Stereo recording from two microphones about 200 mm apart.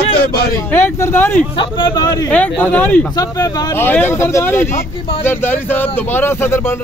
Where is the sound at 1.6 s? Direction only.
25° left (ahead or behind); by 3.1 s 5° left (ahead or behind).